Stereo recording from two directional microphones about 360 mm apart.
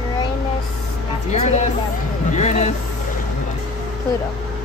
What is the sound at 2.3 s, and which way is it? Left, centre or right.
Speech, centre.